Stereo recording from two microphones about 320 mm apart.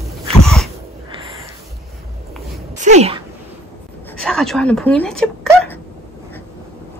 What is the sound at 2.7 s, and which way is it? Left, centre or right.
Speech, right.